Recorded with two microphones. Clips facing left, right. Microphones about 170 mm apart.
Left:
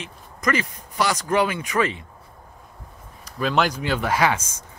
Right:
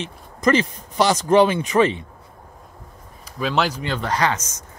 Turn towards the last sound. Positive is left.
turn(degrees=10)  # may be behind; listen again after turning